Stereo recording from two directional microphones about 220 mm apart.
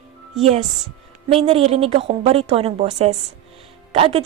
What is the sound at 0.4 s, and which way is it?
A woman's voice, 30° right (ahead or behind).